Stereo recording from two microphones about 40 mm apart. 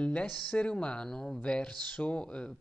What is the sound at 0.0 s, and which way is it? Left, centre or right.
Speech, left.